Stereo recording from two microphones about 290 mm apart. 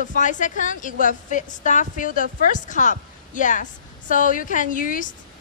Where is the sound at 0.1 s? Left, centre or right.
Left.